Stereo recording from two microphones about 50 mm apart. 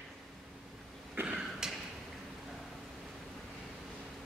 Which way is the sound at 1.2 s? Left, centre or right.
Right.